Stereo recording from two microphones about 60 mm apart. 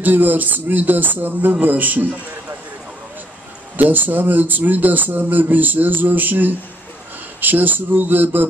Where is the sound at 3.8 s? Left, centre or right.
Right.